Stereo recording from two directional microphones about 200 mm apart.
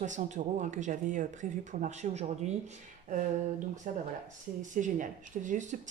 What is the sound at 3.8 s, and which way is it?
Speech, 40° right (ahead or behind).